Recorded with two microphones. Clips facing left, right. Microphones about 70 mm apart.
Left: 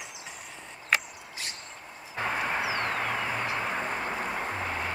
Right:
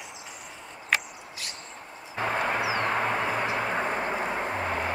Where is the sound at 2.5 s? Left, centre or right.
Right.